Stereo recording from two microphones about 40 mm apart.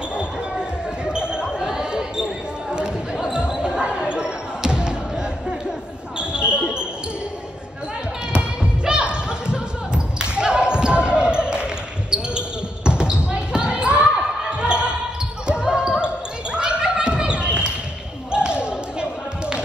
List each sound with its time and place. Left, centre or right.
0.1 s basketball bounce: right
3.6 s basketball bounce: right
8.3 s music: right
13.7 s basketball bounce: right
18.3 s a sound: right